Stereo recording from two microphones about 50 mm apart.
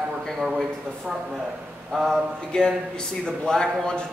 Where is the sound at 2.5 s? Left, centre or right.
Centre.